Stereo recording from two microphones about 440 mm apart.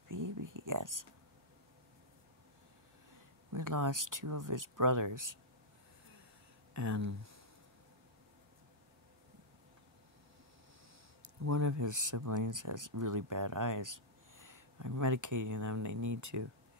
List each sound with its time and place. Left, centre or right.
0.1 s a sound: right
3.5 s speech: right
6.7 s speech: right
11.2 s speech: right